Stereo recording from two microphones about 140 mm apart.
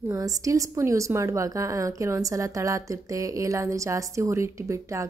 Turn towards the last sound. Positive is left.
turn(degrees=-20)  # may be behind; listen again after turning